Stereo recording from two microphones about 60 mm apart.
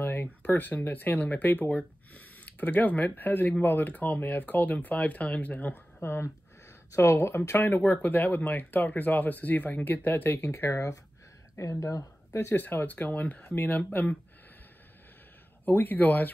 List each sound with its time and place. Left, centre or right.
0.0 s speech: left
5.9 s speech: left
11.5 s speech: left
12.5 s speech: left
15.6 s speech: left